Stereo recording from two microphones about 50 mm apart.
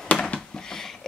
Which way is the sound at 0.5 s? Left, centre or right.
Centre.